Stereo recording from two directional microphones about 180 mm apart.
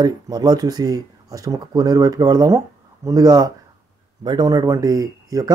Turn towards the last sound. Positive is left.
turn(degrees=-20)  # may be behind; listen again after turning